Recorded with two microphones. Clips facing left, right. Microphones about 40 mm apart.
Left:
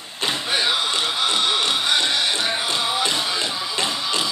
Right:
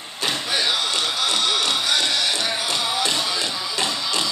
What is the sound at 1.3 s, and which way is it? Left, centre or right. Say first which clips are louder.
Music: left 1 dB; left.